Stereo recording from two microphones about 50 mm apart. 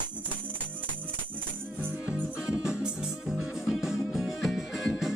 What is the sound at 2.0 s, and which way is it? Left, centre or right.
Music, right.